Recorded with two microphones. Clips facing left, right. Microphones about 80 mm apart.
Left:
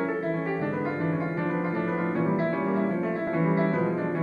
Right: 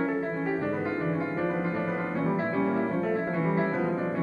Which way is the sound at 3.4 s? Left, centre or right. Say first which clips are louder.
Left 5 dB; centre.